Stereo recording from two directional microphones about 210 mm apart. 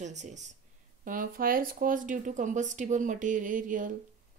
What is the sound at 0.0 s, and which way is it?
Speech, 35° right (ahead or behind).